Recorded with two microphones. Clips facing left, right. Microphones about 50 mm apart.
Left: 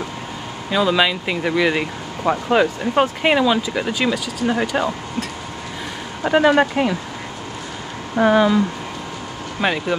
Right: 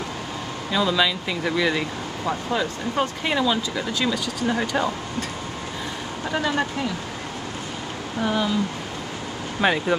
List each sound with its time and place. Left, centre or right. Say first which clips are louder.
0.7 s speech: left 4 dB; left
2.5 s speech: left 9 dB; left
3.3 s speech: left 5 dB; left
4.1 s speech: left 3 dB; centre
6.2 s speech: left 10 dB; left
8.2 s speech: left 9 dB; left
9.6 s speech: even; centre